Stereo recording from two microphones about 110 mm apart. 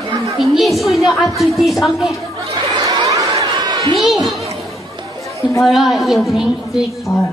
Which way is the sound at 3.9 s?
Centre (ahead or behind).